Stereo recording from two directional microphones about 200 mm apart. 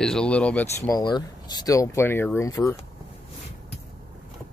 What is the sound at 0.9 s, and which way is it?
Speech, 20° left (ahead or behind).